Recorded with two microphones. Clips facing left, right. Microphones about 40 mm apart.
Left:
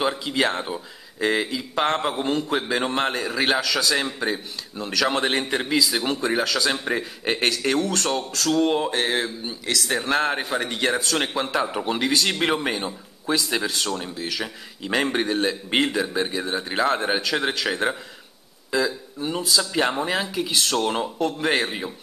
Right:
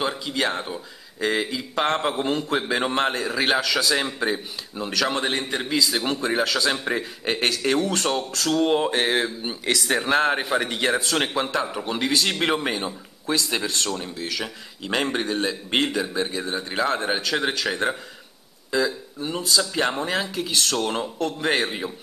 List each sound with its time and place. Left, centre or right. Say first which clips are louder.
0.0 s a man's voice: left 2 dB; centre
8.8 s mantra: right 2 dB; centre
9.5 s a man's voice: right 2 dB; right
10.0 s a man's voice: right 3 dB; centre
11.5 s a man's voice: left 2 dB; centre